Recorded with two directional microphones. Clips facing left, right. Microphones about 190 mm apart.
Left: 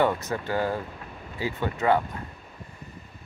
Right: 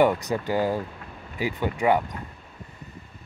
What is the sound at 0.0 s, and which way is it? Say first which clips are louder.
Speech: right 3 dB; 15° right (ahead or behind).